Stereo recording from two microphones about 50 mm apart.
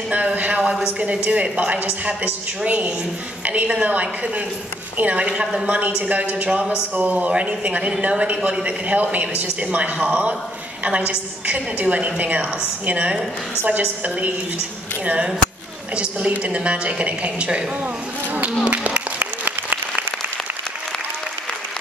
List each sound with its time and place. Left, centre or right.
0.1 s a sound: right
0.9 s a woman's voice: right
18.6 s applause: right